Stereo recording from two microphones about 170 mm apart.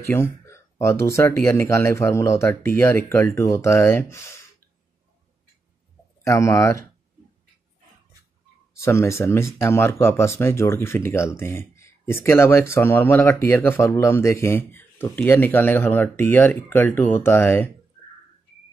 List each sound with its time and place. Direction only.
0.0 s speech: 15° left (ahead or behind)
6.2 s speech: 15° left (ahead or behind)
8.8 s speech: 15° left (ahead or behind)